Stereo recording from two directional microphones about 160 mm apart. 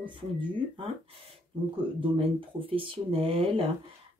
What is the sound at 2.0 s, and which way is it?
Speech, 35° right (ahead or behind).